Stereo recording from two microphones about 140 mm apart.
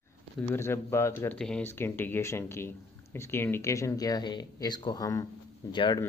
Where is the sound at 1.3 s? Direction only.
5° left (ahead or behind).